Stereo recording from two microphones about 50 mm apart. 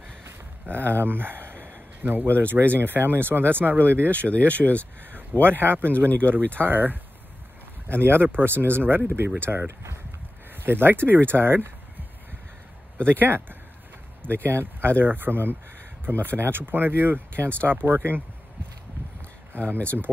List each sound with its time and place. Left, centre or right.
0.2 s a sound: right
2.0 s speech: right
4.3 s speech: left
5.4 s speech: right
6.0 s speech: left
6.3 s speech: right
12.9 s speech: left
13.2 s speech: right
19.5 s speech: right